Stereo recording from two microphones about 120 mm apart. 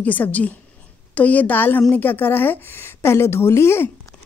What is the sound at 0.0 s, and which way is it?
A woman's voice, 15° left (ahead or behind).